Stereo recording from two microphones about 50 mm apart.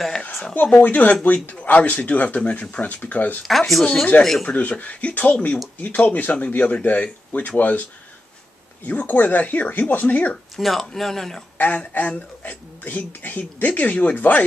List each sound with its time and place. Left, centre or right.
0.8 s speech: left
3.4 s speech: centre
3.8 s speech: left
4.2 s speech: centre
4.5 s speech: left
8.8 s speech: left
10.5 s speech: centre
11.5 s speech: left